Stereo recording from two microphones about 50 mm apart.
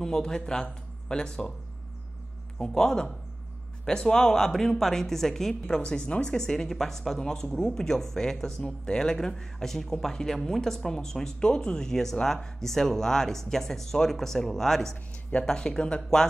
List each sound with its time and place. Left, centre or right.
0.0 s speech: centre
2.6 s speech: centre